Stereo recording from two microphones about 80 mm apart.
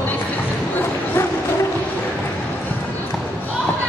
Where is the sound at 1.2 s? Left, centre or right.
Left.